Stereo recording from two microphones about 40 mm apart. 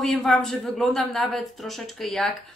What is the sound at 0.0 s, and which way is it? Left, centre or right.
Speech, centre.